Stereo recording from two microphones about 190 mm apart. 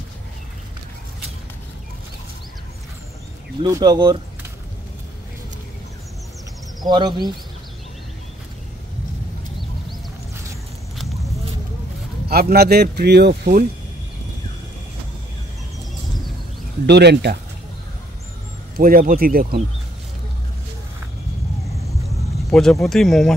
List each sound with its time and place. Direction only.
3.6 s speech: 20° right (ahead or behind)
6.8 s speech: 20° right (ahead or behind)
12.3 s speech: 55° right (ahead or behind)
16.8 s speech: 60° right (ahead or behind)
18.8 s speech: 50° right (ahead or behind)
22.5 s speech: centre (ahead or behind)